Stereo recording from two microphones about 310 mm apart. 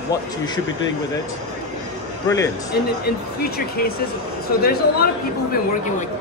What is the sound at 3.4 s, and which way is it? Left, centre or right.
Speech, left.